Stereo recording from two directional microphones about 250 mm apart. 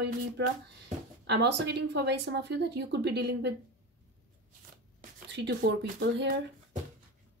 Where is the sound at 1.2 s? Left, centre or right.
Right.